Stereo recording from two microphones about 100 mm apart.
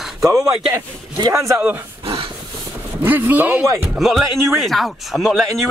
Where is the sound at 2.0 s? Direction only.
70° right (ahead or behind).